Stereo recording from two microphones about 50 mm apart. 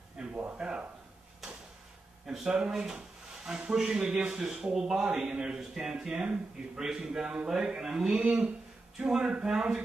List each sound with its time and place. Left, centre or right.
0.2 s speech: right
2.3 s a man's voice: centre